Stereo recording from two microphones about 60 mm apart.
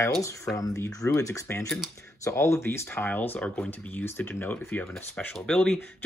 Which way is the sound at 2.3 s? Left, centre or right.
Left.